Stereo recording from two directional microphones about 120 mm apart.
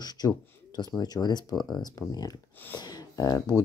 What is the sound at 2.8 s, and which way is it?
Speech, 30° left (ahead or behind).